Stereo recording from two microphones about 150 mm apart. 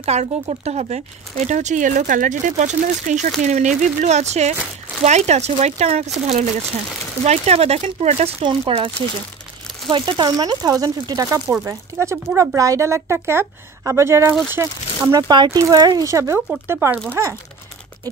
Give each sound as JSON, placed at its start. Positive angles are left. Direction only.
{"t": 0.0, "sound": "speech", "side_deg": -45}
{"t": 8.5, "sound": "a woman's voice", "side_deg": -35}